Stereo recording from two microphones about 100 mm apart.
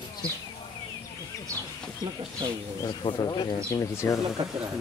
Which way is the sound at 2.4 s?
50° right (ahead or behind).